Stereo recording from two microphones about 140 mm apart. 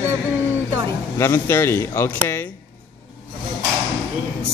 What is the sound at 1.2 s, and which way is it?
Speech, 20° left (ahead or behind).